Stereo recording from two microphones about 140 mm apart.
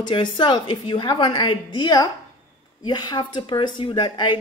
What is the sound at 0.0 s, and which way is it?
Speech, 35° left (ahead or behind).